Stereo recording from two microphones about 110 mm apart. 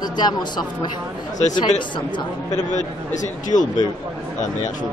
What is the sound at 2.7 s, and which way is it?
Speech, 90° left.